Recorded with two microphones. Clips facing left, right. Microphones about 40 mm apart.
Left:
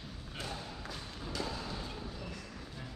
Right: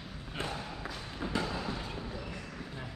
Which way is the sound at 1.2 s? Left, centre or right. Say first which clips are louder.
Right 6 dB; right.